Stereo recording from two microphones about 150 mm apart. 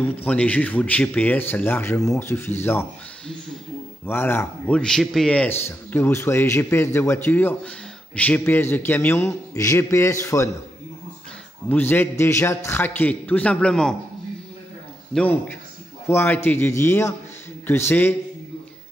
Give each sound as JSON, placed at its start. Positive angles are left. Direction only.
{"t": 0.0, "sound": "a man's voice", "side_deg": 10}
{"t": 4.0, "sound": "a man's voice", "side_deg": 15}
{"t": 11.7, "sound": "a man's voice", "side_deg": 15}
{"t": 15.1, "sound": "a man's voice", "side_deg": 10}